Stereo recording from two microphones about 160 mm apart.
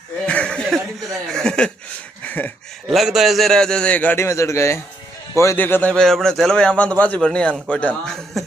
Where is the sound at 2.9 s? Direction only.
Centre (ahead or behind).